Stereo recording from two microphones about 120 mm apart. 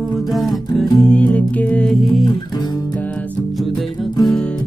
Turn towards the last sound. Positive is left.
turn(degrees=10)  # may be behind; listen again after turning